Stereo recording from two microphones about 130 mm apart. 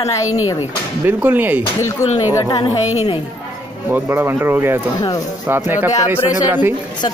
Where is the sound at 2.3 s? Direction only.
30° left (ahead or behind).